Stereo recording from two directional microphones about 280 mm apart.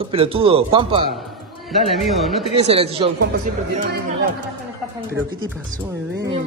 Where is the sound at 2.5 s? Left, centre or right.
Right.